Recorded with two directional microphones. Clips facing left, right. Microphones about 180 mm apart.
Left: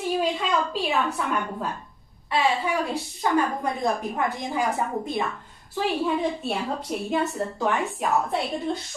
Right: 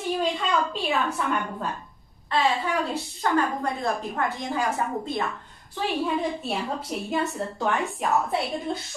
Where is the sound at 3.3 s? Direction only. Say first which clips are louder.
Left 1 dB; 15° left (ahead or behind).